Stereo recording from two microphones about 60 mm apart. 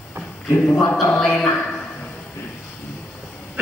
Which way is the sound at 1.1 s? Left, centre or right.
Centre.